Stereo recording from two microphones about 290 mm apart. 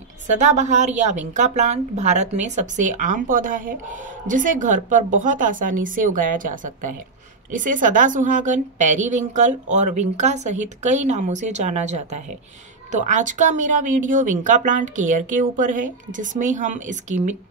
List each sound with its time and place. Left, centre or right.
0.4 s a woman's voice: right